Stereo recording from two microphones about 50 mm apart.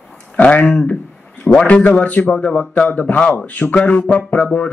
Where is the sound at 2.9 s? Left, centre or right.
Left.